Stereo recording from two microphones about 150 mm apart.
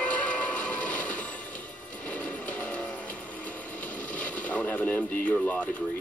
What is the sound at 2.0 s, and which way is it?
Music, 10° left (ahead or behind).